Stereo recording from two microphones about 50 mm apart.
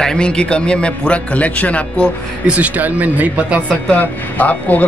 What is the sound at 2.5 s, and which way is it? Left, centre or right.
Speech, right.